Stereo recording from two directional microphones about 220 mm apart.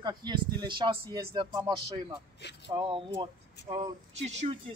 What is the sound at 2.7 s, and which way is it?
A woman's voice, 25° right (ahead or behind).